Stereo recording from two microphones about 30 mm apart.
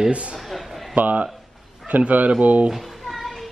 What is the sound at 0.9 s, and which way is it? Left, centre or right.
Speech, right.